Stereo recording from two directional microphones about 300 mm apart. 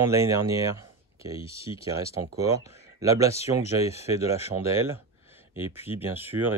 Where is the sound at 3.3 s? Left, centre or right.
Left.